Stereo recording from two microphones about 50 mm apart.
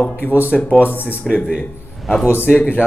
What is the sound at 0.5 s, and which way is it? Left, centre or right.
Speech, left.